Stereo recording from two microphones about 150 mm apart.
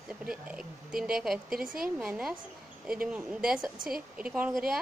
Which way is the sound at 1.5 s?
70° right (ahead or behind).